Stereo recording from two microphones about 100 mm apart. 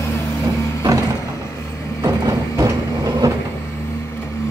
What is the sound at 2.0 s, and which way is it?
Train, 40° right (ahead or behind).